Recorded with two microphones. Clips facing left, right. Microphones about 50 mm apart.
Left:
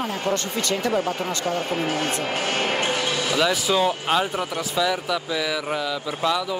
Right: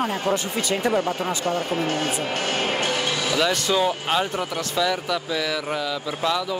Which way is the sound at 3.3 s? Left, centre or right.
Centre.